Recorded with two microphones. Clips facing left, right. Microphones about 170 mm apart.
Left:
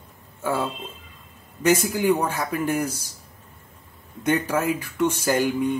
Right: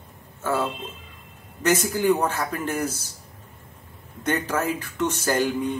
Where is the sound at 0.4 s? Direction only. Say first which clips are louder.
Even; 10° left (ahead or behind).